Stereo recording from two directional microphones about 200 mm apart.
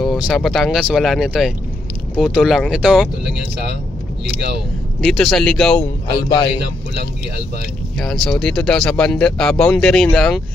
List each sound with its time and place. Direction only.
0.0 s speech: centre (ahead or behind)
5.0 s speech: centre (ahead or behind)
6.2 s a man's voice: 20° left (ahead or behind)
8.0 s speech: 5° left (ahead or behind)